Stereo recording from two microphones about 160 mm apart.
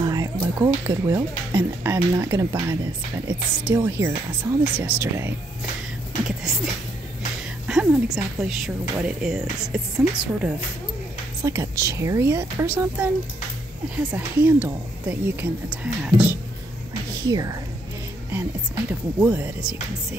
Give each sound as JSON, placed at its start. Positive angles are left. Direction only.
{"t": 0.0, "sound": "a sound", "side_deg": -20}
{"t": 0.6, "sound": "speech", "side_deg": -15}
{"t": 6.2, "sound": "music", "side_deg": -5}
{"t": 7.6, "sound": "a woman's voice", "side_deg": -5}
{"t": 11.4, "sound": "speech", "side_deg": -15}
{"t": 17.2, "sound": "speech", "side_deg": -20}
{"t": 18.9, "sound": "speech", "side_deg": -10}